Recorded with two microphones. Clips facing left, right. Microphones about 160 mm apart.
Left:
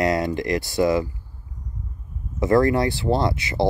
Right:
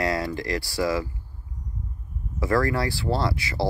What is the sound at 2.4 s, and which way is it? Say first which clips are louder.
Speech: left 6 dB; 20° left (ahead or behind).